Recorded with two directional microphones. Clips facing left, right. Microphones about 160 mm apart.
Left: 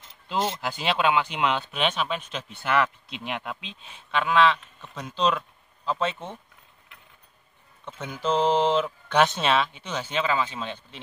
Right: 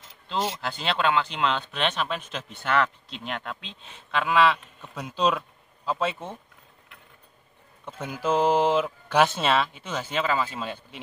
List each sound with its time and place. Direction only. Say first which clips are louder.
0.6 s speech: left 2 dB; 10° left (ahead or behind); by 6.3 s 5° right (ahead or behind)
7.8 s speech: right 1 dB; 10° right (ahead or behind)